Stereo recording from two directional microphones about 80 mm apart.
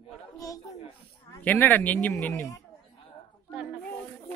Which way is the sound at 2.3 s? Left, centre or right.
Left.